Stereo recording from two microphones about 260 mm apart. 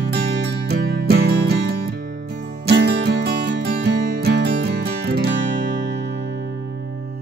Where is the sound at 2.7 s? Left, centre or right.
Right.